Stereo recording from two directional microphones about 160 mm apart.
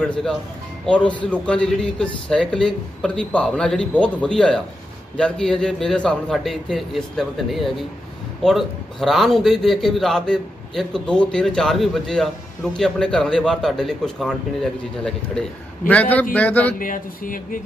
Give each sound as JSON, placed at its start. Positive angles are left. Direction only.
{"t": 0.0, "sound": "a man's voice", "side_deg": 0}
{"t": 16.7, "sound": "speech", "side_deg": 60}